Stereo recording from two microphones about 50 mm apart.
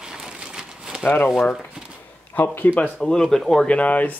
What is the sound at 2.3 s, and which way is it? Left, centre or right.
Speech, left.